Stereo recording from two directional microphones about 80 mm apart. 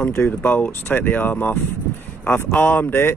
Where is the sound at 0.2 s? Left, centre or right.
Left.